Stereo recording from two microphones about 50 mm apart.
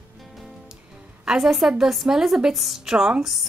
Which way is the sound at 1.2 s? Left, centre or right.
Centre.